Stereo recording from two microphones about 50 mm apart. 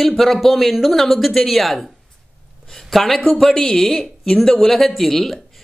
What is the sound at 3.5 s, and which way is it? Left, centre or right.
Speech, centre.